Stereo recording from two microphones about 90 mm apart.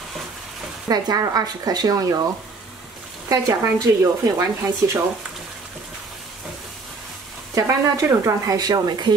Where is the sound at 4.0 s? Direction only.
35° right (ahead or behind).